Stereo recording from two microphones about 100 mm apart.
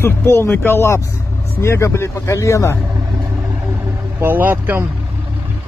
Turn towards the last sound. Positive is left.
turn(degrees=-20)  # may be behind; listen again after turning